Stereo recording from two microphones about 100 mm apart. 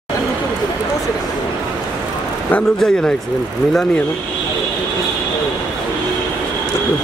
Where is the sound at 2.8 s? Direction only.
5° left (ahead or behind).